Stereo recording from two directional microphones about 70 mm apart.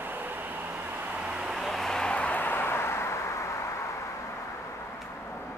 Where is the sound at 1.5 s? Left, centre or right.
Centre; by 4.1 s left.